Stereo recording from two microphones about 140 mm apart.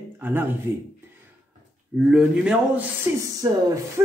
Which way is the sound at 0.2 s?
15° right (ahead or behind).